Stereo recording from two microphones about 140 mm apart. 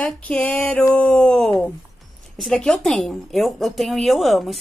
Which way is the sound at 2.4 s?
5° left (ahead or behind).